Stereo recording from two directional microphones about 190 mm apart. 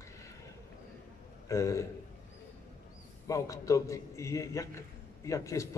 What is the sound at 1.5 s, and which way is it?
Speech, 15° left (ahead or behind).